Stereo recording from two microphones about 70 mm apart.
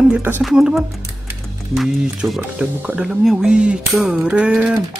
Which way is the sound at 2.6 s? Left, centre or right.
Right.